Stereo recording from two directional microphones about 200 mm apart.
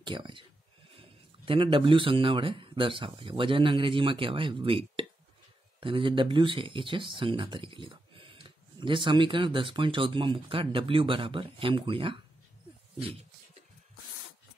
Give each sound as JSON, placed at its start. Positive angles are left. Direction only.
{"t": 0.0, "sound": "speech", "side_deg": -25}